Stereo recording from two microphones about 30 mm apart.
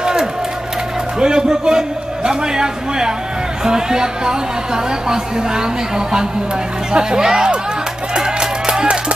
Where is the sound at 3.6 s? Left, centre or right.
Right.